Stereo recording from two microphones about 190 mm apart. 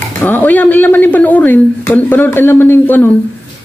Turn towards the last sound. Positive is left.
turn(degrees=10)  # may be behind; listen again after turning